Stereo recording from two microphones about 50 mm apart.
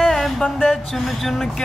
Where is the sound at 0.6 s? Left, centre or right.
Centre.